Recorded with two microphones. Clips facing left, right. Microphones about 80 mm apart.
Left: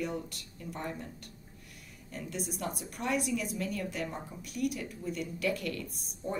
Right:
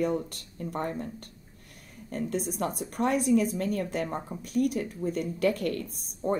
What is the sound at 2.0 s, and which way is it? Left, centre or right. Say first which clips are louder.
Speech: right 8 dB; right.